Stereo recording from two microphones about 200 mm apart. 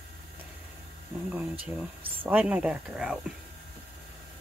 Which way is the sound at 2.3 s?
5° right (ahead or behind).